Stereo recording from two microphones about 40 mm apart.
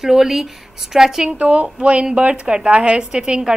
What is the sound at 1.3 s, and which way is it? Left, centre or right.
Speech, right.